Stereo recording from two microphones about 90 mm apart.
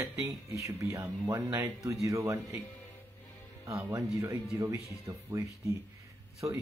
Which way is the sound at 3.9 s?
40° right (ahead or behind).